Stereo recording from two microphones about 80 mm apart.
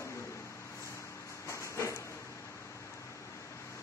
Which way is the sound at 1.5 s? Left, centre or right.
Left.